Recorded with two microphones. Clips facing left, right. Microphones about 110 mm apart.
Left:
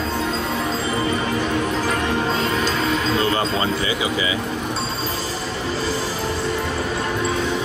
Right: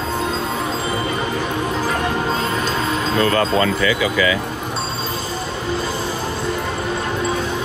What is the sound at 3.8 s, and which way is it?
Speech, 25° left (ahead or behind).